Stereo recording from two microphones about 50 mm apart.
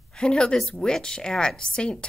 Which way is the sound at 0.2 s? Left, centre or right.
Centre.